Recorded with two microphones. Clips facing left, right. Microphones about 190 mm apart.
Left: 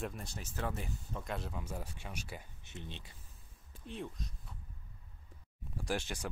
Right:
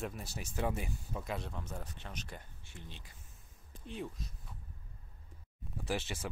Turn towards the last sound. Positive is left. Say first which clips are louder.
# even
turn(degrees=-5)  # may be behind; listen again after turning